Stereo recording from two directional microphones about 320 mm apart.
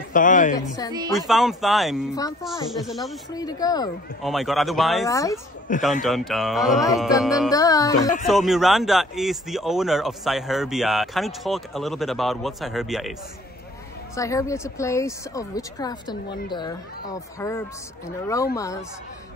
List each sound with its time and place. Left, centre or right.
0.1 s a woman's voice: left
1.1 s speech: centre
3.3 s speech: centre
4.2 s speech: centre
5.0 s speech: centre
5.7 s a man's voice: left
6.0 s speech: centre
7.5 s speech: centre
8.3 s speech: centre
14.1 s speech: centre